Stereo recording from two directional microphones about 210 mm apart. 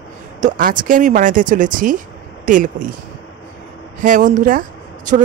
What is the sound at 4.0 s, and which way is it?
Speech, 40° right (ahead or behind).